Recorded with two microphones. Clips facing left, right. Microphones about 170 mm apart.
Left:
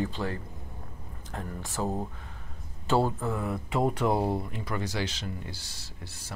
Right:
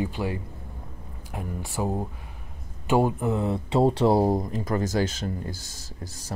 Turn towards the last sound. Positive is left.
turn(degrees=-40)  # may be behind; listen again after turning